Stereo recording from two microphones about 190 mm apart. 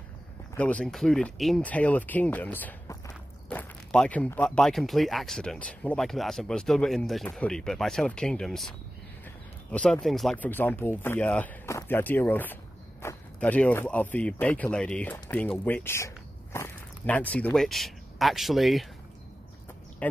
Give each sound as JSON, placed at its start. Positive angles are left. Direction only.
{"t": 0.6, "sound": "speech", "side_deg": 5}
{"t": 20.0, "sound": "speech", "side_deg": 5}